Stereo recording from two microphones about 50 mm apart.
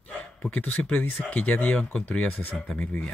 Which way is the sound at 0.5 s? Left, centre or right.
Left.